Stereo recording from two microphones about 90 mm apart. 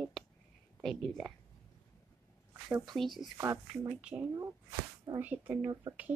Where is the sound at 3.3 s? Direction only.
35° right (ahead or behind).